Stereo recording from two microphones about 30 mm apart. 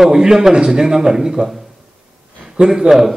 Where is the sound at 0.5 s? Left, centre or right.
Right.